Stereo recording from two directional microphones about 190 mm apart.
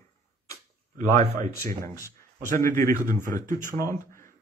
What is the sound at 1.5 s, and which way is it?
A man's voice, 15° left (ahead or behind).